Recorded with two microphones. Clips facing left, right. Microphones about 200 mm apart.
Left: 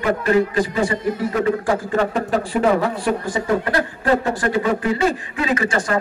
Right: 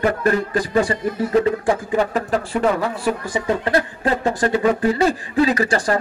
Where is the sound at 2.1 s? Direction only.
Centre (ahead or behind).